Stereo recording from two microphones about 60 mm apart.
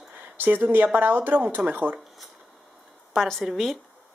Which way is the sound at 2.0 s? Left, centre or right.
Centre.